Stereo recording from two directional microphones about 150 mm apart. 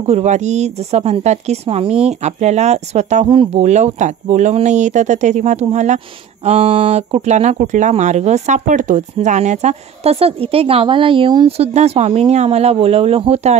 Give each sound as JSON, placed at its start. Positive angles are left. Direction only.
{"t": 0.0, "sound": "speech", "side_deg": -45}